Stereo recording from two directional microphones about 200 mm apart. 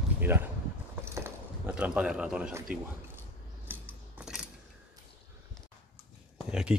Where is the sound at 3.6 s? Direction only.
5° right (ahead or behind).